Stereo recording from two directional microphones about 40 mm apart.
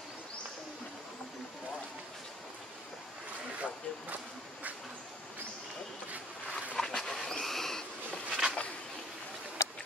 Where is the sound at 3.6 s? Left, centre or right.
Right.